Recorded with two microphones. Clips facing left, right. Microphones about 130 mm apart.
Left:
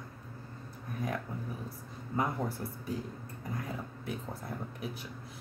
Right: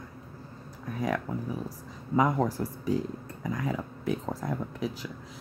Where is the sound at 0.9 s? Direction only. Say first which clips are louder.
Right 6 dB; 90° right.